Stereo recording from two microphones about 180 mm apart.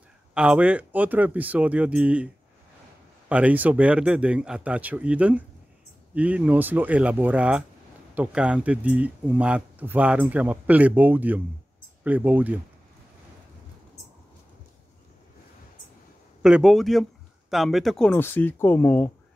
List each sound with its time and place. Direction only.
0.3 s speech: 5° right (ahead or behind)
3.3 s speech: 10° right (ahead or behind)
16.4 s a man's voice: 5° right (ahead or behind)